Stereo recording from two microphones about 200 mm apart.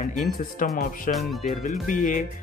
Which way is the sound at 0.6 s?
40° left (ahead or behind).